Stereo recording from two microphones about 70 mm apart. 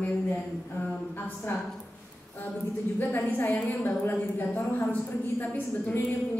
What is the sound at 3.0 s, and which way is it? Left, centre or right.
A woman's voice, left.